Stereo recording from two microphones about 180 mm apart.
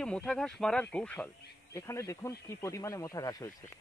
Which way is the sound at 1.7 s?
15° left (ahead or behind).